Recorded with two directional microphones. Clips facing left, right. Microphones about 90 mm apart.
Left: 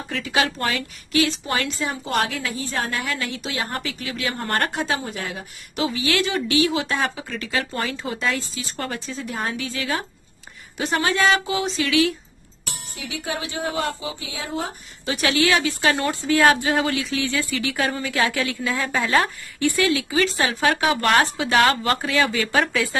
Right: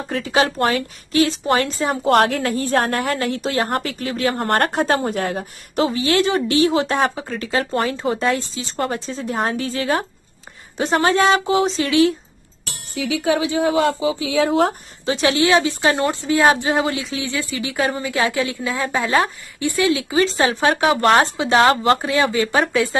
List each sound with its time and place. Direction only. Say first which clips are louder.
0.1 s a woman's voice: right 4 dB; 35° right (ahead or behind)
2.0 s a woman's voice: right 10 dB; 60° right (ahead or behind); by 12.1 s 30° right (ahead or behind)
12.9 s a woman's voice: right 11 dB; 90° right
15.0 s speech: right 4 dB; 25° right (ahead or behind)